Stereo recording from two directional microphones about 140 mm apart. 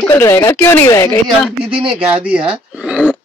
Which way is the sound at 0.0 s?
20° left (ahead or behind).